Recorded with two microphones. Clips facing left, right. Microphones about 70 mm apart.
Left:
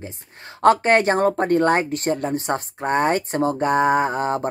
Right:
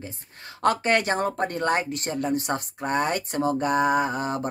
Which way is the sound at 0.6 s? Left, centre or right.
Left.